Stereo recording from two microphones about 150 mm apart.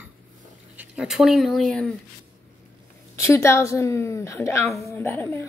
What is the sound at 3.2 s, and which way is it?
A woman's voice, 20° left (ahead or behind).